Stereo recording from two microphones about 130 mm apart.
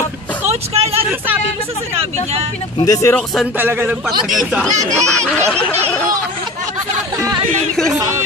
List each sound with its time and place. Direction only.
0.5 s vehicle: 50° right (ahead or behind)
2.8 s speech: 25° left (ahead or behind)
3.5 s a man's voice: 15° right (ahead or behind)
4.3 s speech: centre (ahead or behind)
7.4 s speech: 65° right (ahead or behind)